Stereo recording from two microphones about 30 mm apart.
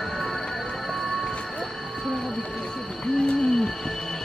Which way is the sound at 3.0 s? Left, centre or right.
Left.